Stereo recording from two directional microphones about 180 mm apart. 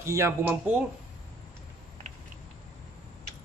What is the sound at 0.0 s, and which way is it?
Speech, 15° right (ahead or behind).